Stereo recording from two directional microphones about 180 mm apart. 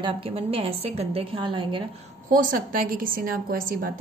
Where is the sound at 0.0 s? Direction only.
30° right (ahead or behind).